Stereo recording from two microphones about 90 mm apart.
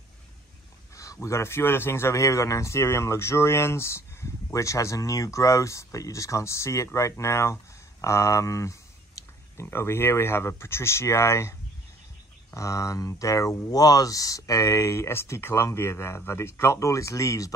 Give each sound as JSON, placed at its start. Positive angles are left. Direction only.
{"t": 0.9, "sound": "a man's voice", "side_deg": 35}
{"t": 9.2, "sound": "a sound", "side_deg": 40}
{"t": 9.6, "sound": "speech", "side_deg": 30}
{"t": 12.5, "sound": "a man's voice", "side_deg": 35}